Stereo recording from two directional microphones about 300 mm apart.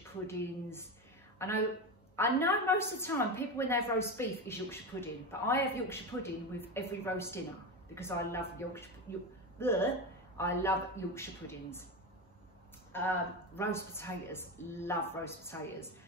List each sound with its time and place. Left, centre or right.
0.3 s a woman's voice: centre
12.9 s a woman's voice: centre